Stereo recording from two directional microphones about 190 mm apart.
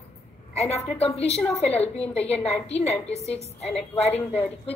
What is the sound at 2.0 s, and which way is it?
Speech, 5° left (ahead or behind).